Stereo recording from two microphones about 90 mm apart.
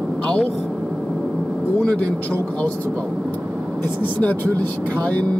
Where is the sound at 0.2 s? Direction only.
10° left (ahead or behind).